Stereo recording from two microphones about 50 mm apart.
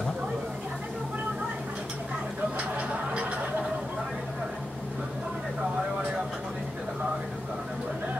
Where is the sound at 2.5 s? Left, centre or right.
Right.